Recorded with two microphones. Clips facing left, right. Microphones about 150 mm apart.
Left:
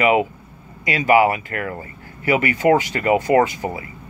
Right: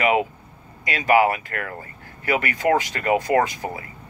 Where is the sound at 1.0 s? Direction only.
20° left (ahead or behind).